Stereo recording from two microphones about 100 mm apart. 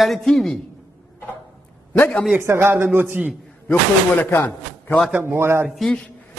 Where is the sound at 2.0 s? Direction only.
15° left (ahead or behind).